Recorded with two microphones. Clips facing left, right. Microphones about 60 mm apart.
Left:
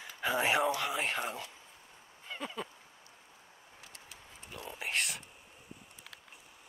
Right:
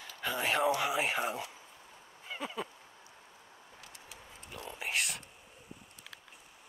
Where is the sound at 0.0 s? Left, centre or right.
Centre.